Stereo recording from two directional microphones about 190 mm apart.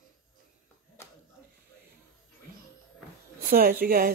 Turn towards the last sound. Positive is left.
turn(degrees=-50)  # may be behind; listen again after turning